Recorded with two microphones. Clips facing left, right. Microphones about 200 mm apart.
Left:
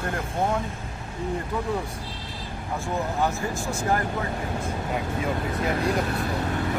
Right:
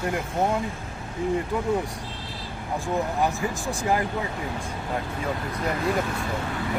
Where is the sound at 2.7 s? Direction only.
15° right (ahead or behind).